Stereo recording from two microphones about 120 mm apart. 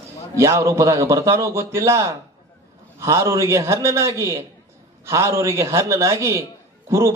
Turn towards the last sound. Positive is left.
turn(degrees=-25)  # may be behind; listen again after turning